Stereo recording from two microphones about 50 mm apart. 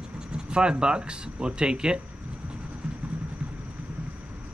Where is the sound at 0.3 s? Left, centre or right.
Centre.